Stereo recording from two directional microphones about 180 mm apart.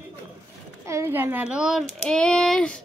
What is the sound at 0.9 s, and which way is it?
A child's voice, 15° right (ahead or behind).